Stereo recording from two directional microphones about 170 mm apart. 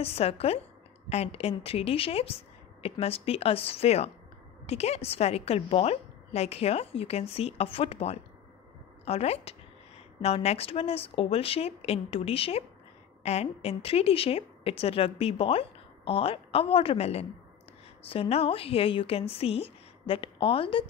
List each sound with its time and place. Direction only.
0.0 s a woman's voice: 35° left (ahead or behind)